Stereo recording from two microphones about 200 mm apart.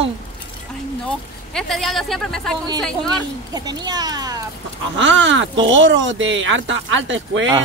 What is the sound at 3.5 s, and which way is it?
Speech, 20° right (ahead or behind).